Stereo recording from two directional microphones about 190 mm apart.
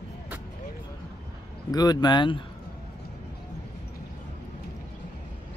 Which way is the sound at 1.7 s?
20° left (ahead or behind).